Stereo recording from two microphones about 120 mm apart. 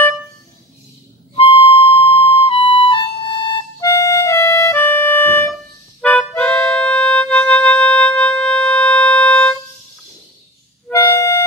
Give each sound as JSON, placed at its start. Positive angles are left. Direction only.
{"t": 1.3, "sound": "music", "side_deg": 50}
{"t": 3.8, "sound": "music", "side_deg": 25}
{"t": 10.9, "sound": "music", "side_deg": 25}